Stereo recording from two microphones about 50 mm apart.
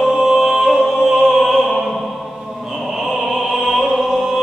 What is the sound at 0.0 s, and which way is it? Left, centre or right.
Music, centre.